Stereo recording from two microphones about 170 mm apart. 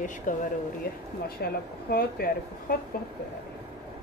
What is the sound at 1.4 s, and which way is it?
A woman's voice, 65° left (ahead or behind).